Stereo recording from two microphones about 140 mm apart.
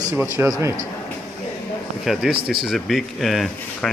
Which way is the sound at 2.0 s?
Centre (ahead or behind).